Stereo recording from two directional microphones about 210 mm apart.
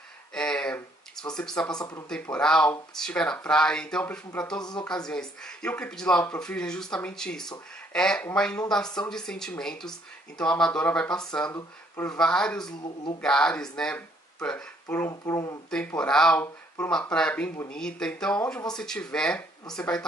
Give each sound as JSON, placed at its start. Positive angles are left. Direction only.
{"t": 0.3, "sound": "a sound", "side_deg": 5}
{"t": 1.8, "sound": "speech", "side_deg": 20}
{"t": 2.0, "sound": "speech", "side_deg": 5}
{"t": 4.6, "sound": "speech", "side_deg": 20}
{"t": 4.8, "sound": "speech", "side_deg": 5}
{"t": 12.8, "sound": "speech", "side_deg": 20}
{"t": 13.2, "sound": "speech", "side_deg": 5}
{"t": 15.7, "sound": "speech", "side_deg": 5}